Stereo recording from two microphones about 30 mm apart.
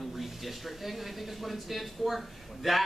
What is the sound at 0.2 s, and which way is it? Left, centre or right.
Speech, centre.